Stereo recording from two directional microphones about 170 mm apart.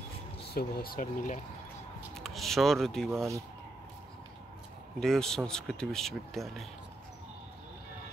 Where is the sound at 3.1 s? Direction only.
15° right (ahead or behind).